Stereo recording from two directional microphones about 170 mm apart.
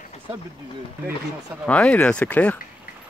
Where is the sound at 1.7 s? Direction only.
10° left (ahead or behind).